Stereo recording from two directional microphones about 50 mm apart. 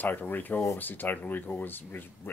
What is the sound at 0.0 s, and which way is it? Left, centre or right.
Speech, left.